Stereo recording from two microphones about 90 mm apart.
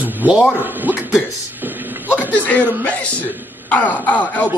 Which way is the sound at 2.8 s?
15° left (ahead or behind).